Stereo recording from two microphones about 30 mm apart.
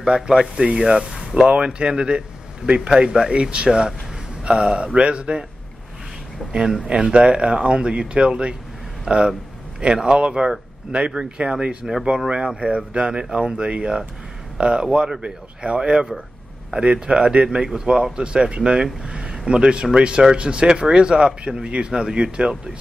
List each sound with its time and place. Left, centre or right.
0.0 s speech: right
1.5 s speech: right
2.9 s speech: right
6.5 s speech: centre
6.9 s speech: right
11.8 s speech: centre
12.3 s speech: right
12.5 s speech: right
17.0 s speech: right